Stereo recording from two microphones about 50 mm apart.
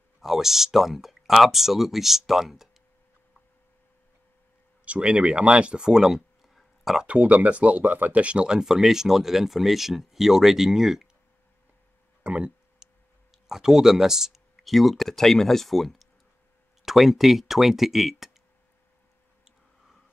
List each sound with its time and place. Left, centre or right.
0.2 s speech: centre
4.8 s speech: right; by 7.1 s centre
7.1 s speech: right; by 11.1 s centre
12.2 s a sound: right
13.3 s speech: centre